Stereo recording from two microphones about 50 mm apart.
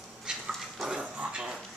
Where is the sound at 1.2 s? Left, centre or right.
Centre.